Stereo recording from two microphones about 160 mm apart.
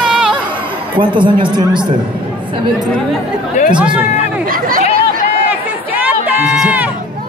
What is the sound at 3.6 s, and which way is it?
Speech, 5° right (ahead or behind).